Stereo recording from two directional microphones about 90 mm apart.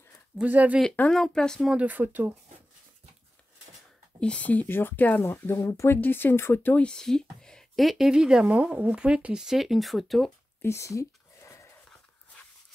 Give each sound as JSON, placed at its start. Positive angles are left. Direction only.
{"t": 0.4, "sound": "speech", "side_deg": -15}
{"t": 1.1, "sound": "speech", "side_deg": 5}
{"t": 1.6, "sound": "speech", "side_deg": -10}
{"t": 4.2, "sound": "speech", "side_deg": 15}
{"t": 6.9, "sound": "speech", "side_deg": 5}
{"t": 10.6, "sound": "a sound", "side_deg": 30}